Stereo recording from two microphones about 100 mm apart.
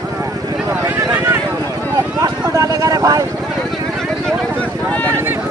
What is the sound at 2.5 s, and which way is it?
Vehicle, 35° right (ahead or behind).